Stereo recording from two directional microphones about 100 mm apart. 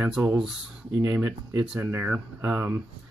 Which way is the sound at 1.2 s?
30° right (ahead or behind).